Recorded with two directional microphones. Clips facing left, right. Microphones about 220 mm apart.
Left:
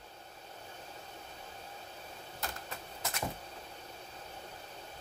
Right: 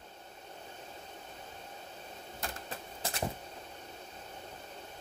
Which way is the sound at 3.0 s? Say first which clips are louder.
Right 3 dB; 30° right (ahead or behind).